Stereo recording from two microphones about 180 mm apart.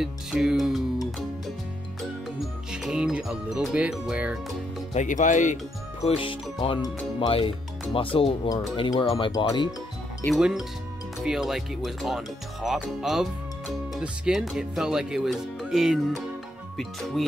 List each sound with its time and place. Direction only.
0.0 s speech: 5° right (ahead or behind)
2.2 s music: centre (ahead or behind)
4.9 s speech: 45° left (ahead or behind)
6.0 s speech: 30° left (ahead or behind)
10.2 s speech: centre (ahead or behind)